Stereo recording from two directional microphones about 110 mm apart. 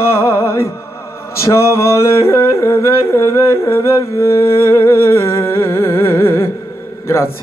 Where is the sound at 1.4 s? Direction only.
25° left (ahead or behind).